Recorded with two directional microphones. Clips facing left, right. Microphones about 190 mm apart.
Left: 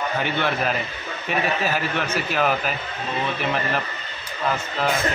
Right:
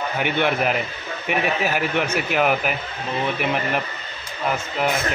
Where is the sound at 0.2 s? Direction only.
15° right (ahead or behind).